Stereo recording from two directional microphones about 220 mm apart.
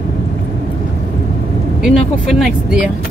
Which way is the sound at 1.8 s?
Centre (ahead or behind).